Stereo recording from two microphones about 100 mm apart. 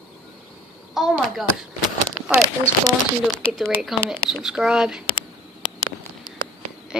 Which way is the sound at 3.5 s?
Centre (ahead or behind).